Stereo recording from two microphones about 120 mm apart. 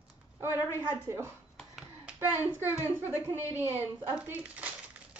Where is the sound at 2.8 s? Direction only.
20° right (ahead or behind).